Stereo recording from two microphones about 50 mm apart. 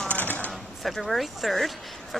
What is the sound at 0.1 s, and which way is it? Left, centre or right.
Typewriter, left.